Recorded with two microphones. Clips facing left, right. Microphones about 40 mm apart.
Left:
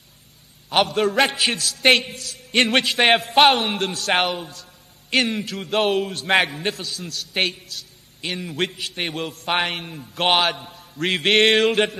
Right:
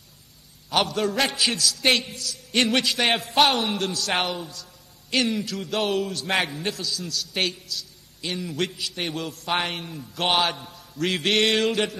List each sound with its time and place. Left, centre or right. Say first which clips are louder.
0.9 s a man's voice: left 5 dB; left
4.2 s a man's voice: left 4 dB; left
5.3 s a man's voice: left 3 dB; left
10.4 s a man's voice: left 3 dB; centre
10.7 s a man's voice: left 2 dB; left